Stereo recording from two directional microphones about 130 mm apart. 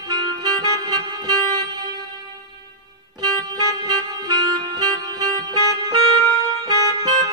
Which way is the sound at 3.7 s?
30° right (ahead or behind).